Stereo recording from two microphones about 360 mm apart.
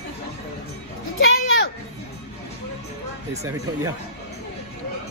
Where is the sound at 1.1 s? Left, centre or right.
Left.